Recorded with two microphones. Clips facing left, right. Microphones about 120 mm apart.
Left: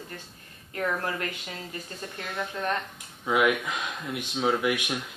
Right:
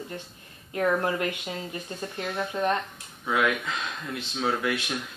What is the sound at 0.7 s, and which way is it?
A woman's voice, 20° right (ahead or behind).